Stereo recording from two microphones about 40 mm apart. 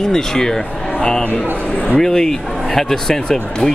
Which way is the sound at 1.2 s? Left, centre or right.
Left.